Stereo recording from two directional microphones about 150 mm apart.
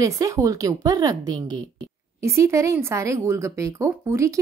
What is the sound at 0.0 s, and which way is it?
Speech, 20° right (ahead or behind).